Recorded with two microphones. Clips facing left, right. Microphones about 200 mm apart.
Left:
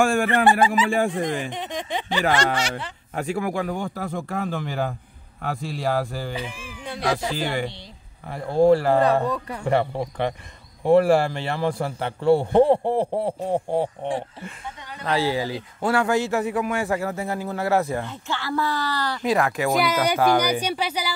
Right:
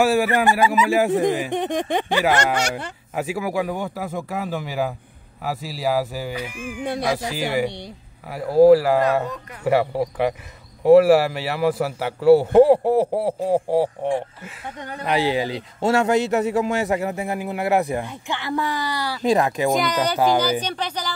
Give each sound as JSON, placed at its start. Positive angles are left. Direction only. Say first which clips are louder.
{"t": 0.0, "sound": "a man's voice", "louder": "right 1 dB", "side_deg": -5}
{"t": 1.5, "sound": "speech", "louder": "right 7 dB", "side_deg": -55}
{"t": 3.2, "sound": "a man's voice", "louder": "right 1 dB", "side_deg": -5}
{"t": 15.0, "sound": "a man's voice", "louder": "right 2 dB", "side_deg": -20}
{"t": 19.7, "sound": "a man's voice", "louder": "even", "side_deg": 5}